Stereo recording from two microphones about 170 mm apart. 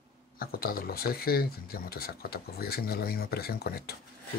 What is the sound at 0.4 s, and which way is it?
Speech, 60° left (ahead or behind).